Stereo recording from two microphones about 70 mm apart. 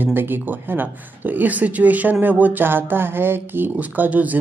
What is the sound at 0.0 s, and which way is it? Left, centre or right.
Speech, right.